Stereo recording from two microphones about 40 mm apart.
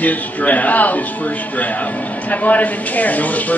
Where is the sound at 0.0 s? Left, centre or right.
Left.